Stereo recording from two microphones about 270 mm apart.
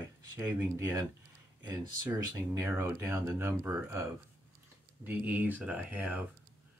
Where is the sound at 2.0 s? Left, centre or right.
Centre.